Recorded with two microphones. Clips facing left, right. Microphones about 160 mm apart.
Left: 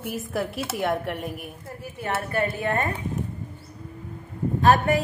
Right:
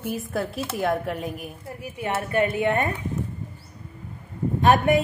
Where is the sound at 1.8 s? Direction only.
15° right (ahead or behind).